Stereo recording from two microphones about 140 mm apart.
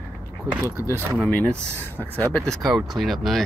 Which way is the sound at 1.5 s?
20° right (ahead or behind).